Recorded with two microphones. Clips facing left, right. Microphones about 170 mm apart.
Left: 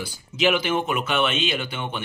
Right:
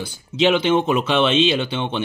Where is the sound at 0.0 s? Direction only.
30° right (ahead or behind).